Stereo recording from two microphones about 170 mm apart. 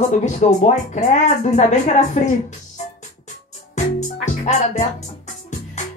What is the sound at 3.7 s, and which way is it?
Music, 45° left (ahead or behind).